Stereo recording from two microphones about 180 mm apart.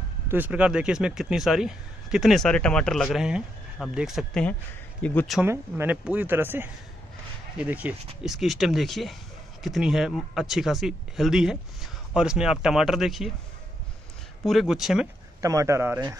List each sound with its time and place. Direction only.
0.3 s speech: 10° right (ahead or behind)
5.4 s speech: 10° right (ahead or behind)
14.4 s speech: centre (ahead or behind)
15.4 s speech: 15° right (ahead or behind)